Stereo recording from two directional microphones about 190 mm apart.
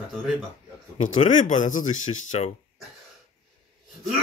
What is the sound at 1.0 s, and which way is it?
Speech, 40° left (ahead or behind).